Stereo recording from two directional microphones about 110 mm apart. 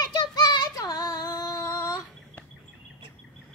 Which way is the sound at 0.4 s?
40° left (ahead or behind).